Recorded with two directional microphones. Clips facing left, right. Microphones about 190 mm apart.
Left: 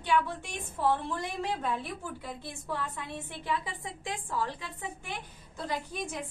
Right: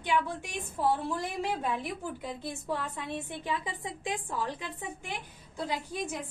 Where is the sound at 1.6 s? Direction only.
15° right (ahead or behind).